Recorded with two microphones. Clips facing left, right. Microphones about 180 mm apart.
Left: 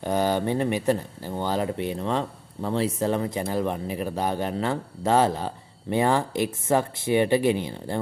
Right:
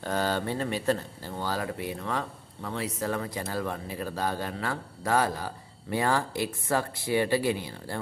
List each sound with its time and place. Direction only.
0.0 s speech: 15° left (ahead or behind)